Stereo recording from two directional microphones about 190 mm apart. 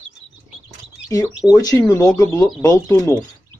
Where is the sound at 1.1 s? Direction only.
20° left (ahead or behind).